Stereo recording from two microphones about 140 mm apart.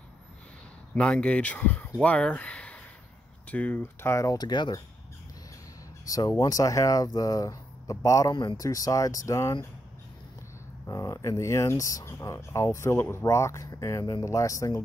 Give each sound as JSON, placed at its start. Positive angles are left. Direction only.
{"t": 0.9, "sound": "speech", "side_deg": 5}
{"t": 6.0, "sound": "speech", "side_deg": 25}
{"t": 10.9, "sound": "speech", "side_deg": 25}